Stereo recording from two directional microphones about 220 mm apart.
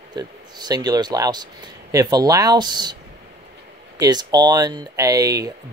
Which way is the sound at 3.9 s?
20° right (ahead or behind).